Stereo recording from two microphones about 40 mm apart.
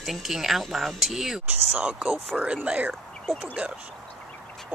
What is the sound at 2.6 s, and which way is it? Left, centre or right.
Speech, right.